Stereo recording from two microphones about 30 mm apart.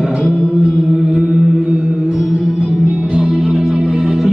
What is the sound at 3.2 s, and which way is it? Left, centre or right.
Music, right.